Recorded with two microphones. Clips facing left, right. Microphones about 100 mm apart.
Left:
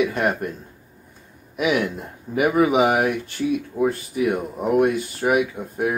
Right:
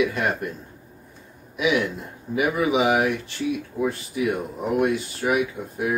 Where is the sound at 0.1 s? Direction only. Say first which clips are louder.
Left 3 dB; 45° left (ahead or behind).